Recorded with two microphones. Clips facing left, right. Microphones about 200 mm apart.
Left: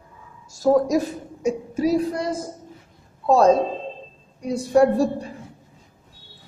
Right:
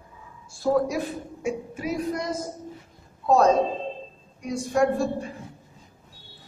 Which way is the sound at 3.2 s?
30° left (ahead or behind).